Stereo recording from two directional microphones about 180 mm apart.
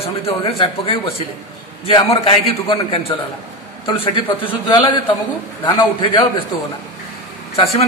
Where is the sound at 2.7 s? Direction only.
30° left (ahead or behind).